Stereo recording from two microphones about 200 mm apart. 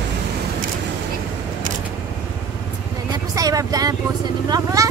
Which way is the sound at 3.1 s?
20° right (ahead or behind).